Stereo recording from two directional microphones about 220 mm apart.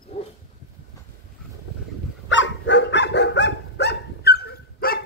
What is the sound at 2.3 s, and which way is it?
Dog, 55° left (ahead or behind).